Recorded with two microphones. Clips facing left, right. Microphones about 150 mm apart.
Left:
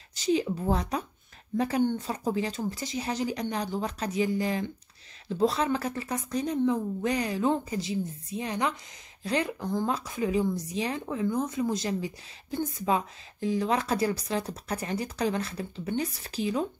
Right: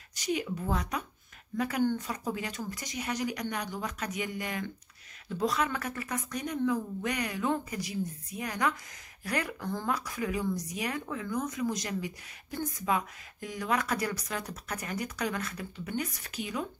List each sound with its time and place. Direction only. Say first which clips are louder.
0.1 s speech: left 6 dB; 30° left (ahead or behind)